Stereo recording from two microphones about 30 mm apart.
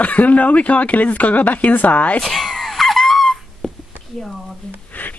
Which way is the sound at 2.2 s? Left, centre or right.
Centre.